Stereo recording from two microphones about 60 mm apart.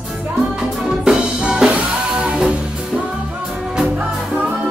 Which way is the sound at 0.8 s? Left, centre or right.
Centre.